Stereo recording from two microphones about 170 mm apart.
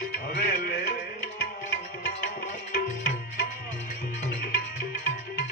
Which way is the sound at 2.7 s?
60° left (ahead or behind).